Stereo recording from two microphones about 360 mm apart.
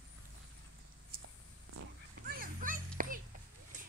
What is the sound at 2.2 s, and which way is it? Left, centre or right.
Children playing, right.